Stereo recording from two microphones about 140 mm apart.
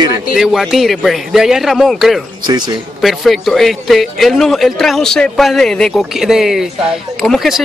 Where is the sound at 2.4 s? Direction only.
30° right (ahead or behind).